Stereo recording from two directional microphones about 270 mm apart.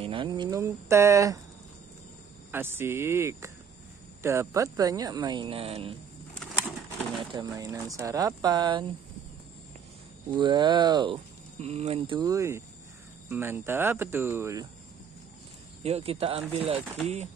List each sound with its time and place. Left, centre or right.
0.0 s speech: centre
2.5 s speech: centre
6.3 s a sound: centre
7.2 s speech: centre
10.3 s speech: centre
15.8 s speech: right